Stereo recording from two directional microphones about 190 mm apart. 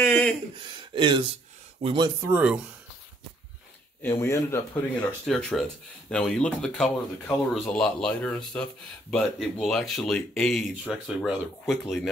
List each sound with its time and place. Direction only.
0.0 s a sound: 5° left (ahead or behind)
0.6 s speech: 25° right (ahead or behind)
2.3 s speech: 5° right (ahead or behind)
4.0 s speech: 15° left (ahead or behind)
5.2 s speech: 5° left (ahead or behind)